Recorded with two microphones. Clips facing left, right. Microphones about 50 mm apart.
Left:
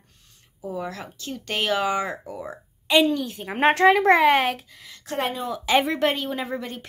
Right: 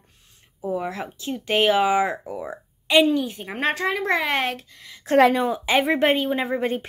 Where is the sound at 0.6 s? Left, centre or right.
Centre.